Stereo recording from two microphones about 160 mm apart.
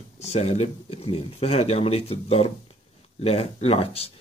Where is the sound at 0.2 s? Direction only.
40° left (ahead or behind).